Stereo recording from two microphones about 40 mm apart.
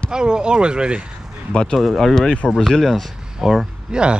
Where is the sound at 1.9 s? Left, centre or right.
Centre.